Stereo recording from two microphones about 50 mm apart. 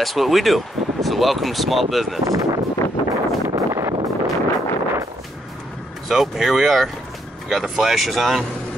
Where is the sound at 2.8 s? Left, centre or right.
Left.